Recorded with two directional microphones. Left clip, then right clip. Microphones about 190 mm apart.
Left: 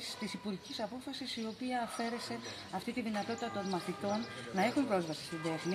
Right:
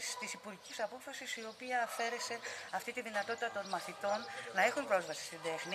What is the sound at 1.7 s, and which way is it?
Speech, 10° right (ahead or behind).